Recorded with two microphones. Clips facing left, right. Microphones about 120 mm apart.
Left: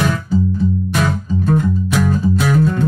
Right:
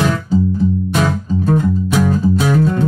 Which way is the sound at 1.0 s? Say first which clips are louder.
Right 2 dB; 25° right (ahead or behind).